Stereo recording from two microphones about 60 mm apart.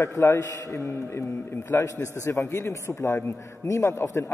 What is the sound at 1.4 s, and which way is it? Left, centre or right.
A man's voice, left.